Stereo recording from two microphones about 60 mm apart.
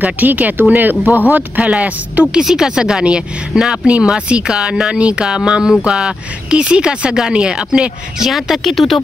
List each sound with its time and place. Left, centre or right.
0.0 s speech: right
2.4 s speech: centre
8.3 s speech: centre